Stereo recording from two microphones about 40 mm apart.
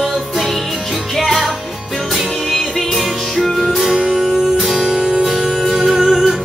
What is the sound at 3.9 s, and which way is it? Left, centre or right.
Music, centre.